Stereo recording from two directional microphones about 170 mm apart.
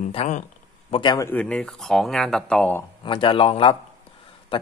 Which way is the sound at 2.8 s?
30° left (ahead or behind).